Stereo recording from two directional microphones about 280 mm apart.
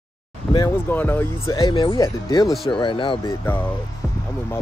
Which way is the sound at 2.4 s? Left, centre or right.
Centre.